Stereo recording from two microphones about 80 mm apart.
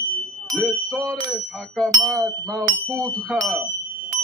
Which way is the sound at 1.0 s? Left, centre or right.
Centre.